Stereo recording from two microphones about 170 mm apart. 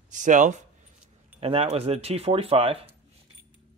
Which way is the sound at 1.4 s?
35° right (ahead or behind).